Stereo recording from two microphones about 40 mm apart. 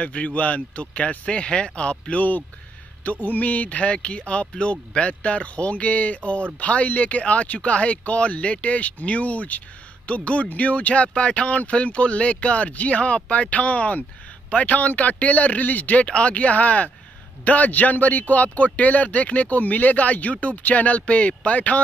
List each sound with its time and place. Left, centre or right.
0.0 s speech: left
3.0 s speech: left
16.1 s speech: left